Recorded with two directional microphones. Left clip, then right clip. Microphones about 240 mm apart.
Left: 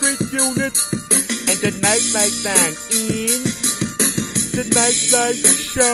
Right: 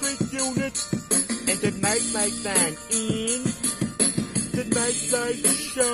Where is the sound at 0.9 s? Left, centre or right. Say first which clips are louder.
Left 6 dB; left.